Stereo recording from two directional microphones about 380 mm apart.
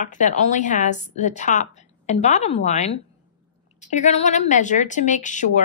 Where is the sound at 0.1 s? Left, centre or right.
Centre.